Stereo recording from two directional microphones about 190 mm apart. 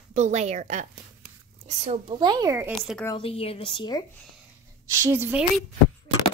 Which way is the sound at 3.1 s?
30° left (ahead or behind).